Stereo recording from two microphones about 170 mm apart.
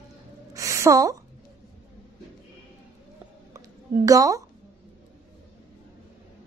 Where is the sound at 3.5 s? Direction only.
20° right (ahead or behind).